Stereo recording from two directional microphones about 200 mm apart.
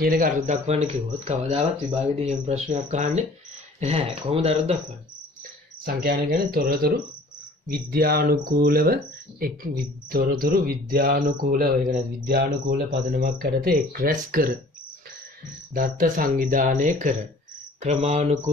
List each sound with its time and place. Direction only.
0.0 s speech: 45° right (ahead or behind)
5.9 s speech: 50° right (ahead or behind)
15.7 s speech: 45° right (ahead or behind)